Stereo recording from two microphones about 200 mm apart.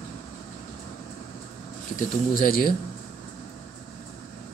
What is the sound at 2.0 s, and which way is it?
Speech, 45° left (ahead or behind).